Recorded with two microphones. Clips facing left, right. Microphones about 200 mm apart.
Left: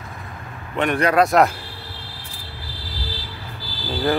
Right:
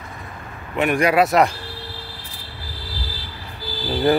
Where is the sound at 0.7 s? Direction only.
10° right (ahead or behind).